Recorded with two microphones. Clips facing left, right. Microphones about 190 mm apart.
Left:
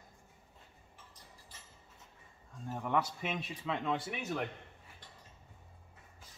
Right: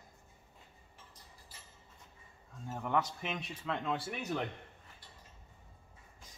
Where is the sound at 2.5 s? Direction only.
Centre (ahead or behind).